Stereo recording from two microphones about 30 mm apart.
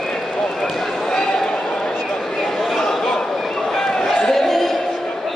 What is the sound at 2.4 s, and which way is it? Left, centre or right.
Chatter, centre.